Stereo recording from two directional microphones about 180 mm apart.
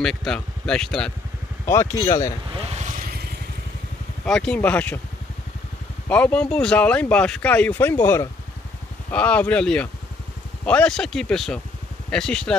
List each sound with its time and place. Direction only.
0.0 s speech: 5° left (ahead or behind)
1.7 s speech: 15° left (ahead or behind)
4.2 s speech: 5° left (ahead or behind)
6.0 s speech: 5° left (ahead or behind)